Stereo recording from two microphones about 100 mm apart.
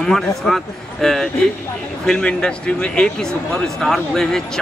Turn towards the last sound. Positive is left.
turn(degrees=5)  # may be behind; listen again after turning